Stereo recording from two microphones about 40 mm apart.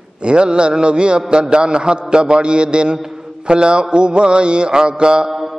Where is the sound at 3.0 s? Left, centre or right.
Right.